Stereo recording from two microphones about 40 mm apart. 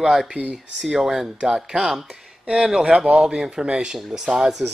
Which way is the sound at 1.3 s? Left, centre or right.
Centre.